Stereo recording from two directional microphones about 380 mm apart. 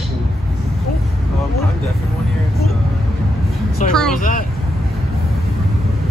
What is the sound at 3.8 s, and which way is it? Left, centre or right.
Speech, centre.